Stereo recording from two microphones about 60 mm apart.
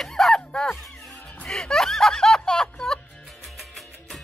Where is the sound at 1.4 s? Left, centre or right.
Centre.